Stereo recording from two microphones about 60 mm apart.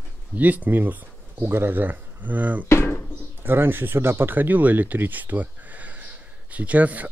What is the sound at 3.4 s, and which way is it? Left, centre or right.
Speech, right.